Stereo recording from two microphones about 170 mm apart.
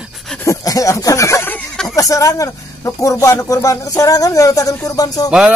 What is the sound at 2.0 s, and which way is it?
Speech, 20° left (ahead or behind).